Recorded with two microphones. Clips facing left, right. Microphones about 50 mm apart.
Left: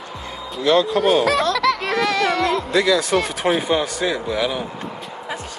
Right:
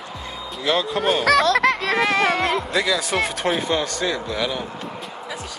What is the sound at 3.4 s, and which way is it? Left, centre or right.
Speech, centre.